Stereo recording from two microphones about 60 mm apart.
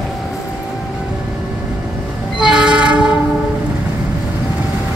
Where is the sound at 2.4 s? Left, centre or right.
Centre.